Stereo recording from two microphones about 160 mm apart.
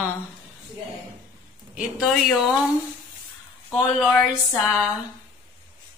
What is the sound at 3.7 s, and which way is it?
Speech, centre (ahead or behind).